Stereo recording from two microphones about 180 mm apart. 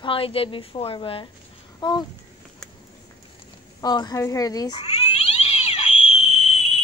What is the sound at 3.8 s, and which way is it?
A woman's voice, 20° left (ahead or behind).